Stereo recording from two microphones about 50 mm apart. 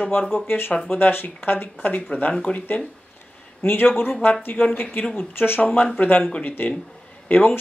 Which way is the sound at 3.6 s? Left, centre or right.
Left.